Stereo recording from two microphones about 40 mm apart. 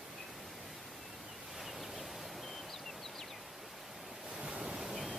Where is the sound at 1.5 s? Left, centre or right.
Centre.